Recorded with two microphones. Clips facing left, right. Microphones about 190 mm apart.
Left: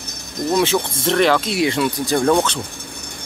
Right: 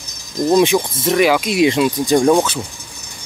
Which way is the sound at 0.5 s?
15° right (ahead or behind).